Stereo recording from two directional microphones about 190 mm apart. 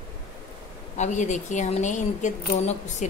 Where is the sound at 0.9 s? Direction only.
40° left (ahead or behind).